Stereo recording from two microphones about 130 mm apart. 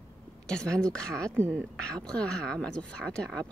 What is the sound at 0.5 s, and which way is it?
Speech, 5° left (ahead or behind).